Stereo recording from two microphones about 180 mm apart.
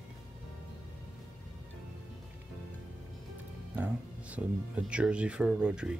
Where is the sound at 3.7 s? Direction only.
10° right (ahead or behind).